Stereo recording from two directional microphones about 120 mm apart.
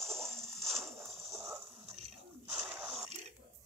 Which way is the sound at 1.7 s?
70° right (ahead or behind).